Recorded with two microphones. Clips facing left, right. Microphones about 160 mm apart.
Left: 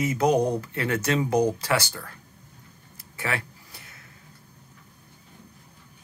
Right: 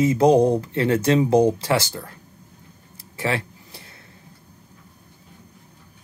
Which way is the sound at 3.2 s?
25° right (ahead or behind).